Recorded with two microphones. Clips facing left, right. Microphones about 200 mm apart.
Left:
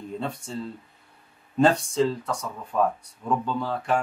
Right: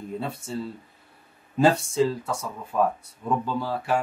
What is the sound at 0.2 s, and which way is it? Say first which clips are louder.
Speech: right 1 dB; 5° right (ahead or behind).